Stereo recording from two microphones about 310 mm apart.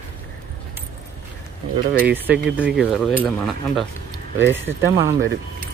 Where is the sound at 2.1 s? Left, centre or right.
Centre.